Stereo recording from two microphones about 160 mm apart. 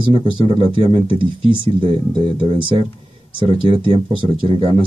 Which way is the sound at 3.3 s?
30° right (ahead or behind).